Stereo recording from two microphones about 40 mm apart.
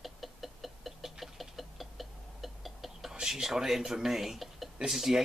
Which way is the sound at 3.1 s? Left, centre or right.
Centre.